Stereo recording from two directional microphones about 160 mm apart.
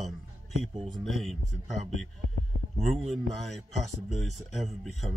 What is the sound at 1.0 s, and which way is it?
Speech, centre (ahead or behind).